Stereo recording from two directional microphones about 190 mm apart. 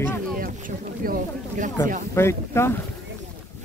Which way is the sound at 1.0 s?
45° right (ahead or behind).